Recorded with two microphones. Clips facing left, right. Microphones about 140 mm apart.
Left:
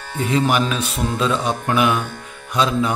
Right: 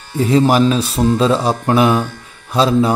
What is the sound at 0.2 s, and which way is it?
Speech, 35° right (ahead or behind).